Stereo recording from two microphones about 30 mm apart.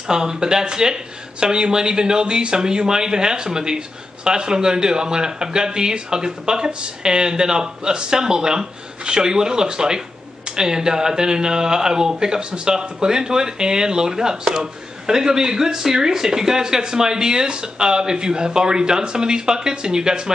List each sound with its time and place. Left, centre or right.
0.1 s speech: right